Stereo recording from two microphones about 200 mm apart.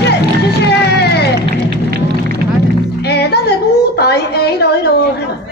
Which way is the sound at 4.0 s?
55° left (ahead or behind).